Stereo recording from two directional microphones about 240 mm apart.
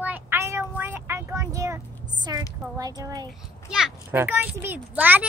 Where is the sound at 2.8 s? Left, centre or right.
Centre.